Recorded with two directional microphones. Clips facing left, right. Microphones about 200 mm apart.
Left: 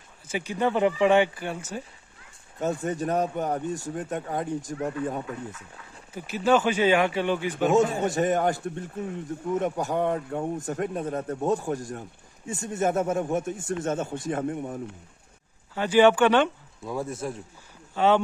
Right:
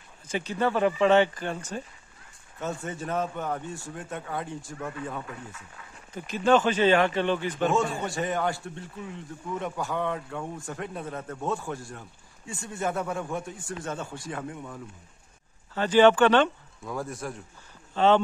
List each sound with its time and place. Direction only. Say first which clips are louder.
0.3 s speech: left 1 dB; 10° left (ahead or behind)
2.8 s a man's voice: left 4 dB; 40° left (ahead or behind)
3.6 s speech: left 7 dB; 15° left (ahead or behind)
3.9 s a man's voice: left 5 dB; 35° left (ahead or behind)
4.6 s speech: left 7 dB; 15° left (ahead or behind)
4.8 s a man's voice: left 5 dB; 40° left (ahead or behind)
6.1 s speech: even; 10° left (ahead or behind)
8.2 s a man's voice: left 4 dB; 45° left (ahead or behind)
11.4 s speech: left 5 dB; 15° left (ahead or behind)
12.8 s speech: left 5 dB; 45° left (ahead or behind)
13.1 s speech: left 6 dB; 20° left (ahead or behind)
14.3 s speech: left 9 dB; 45° left (ahead or behind)
15.7 s speech: even; 10° left (ahead or behind)